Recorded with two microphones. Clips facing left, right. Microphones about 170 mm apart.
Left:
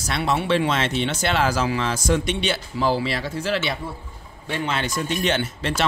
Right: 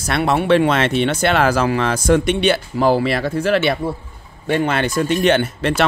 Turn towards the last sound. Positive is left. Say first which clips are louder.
# right 7 dB
turn(degrees=-60)  # may be behind; listen again after turning